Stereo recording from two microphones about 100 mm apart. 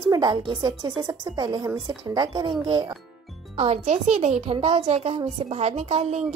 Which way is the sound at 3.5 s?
90° right.